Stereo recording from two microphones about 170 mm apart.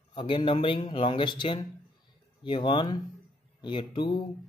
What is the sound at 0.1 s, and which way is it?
Speech, 30° left (ahead or behind).